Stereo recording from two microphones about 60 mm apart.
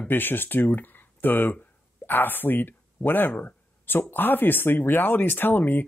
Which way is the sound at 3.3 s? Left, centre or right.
Left.